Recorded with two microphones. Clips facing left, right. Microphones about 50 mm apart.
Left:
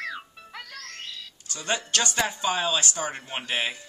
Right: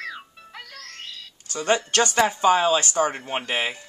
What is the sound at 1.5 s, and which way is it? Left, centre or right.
Speech, right.